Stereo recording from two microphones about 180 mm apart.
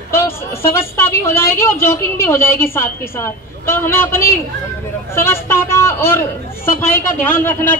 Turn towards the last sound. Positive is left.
turn(degrees=10)  # may be behind; listen again after turning